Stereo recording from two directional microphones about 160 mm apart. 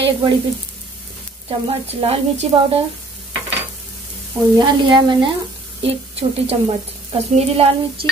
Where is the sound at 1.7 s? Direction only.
35° right (ahead or behind).